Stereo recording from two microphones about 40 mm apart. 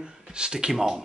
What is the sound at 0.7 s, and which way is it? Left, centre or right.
Speech, centre.